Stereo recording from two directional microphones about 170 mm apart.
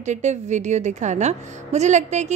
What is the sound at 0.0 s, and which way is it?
A woman's voice, 45° right (ahead or behind).